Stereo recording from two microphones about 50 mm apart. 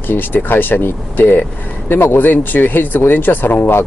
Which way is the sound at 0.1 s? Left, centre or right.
Left.